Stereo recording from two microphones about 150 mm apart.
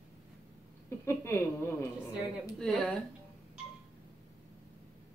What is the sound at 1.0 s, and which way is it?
Singing, 15° left (ahead or behind).